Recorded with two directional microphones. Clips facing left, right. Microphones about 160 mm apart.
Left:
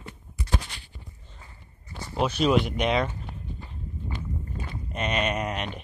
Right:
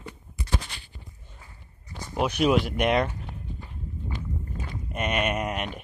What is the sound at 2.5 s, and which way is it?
Speech, 5° right (ahead or behind).